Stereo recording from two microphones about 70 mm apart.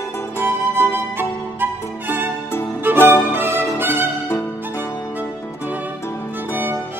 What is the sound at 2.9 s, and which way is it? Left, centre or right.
Music, right.